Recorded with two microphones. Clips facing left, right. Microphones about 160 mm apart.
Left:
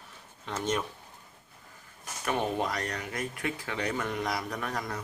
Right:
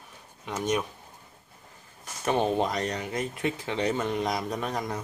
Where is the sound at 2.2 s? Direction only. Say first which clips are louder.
Right 5 dB; 25° right (ahead or behind).